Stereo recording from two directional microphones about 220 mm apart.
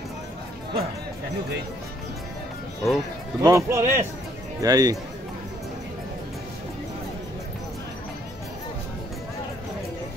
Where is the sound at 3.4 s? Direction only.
15° right (ahead or behind).